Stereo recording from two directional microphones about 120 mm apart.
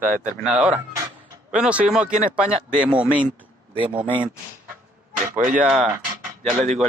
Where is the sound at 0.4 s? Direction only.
5° right (ahead or behind).